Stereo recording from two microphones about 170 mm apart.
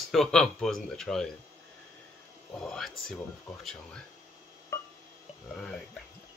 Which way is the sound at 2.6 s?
Centre (ahead or behind).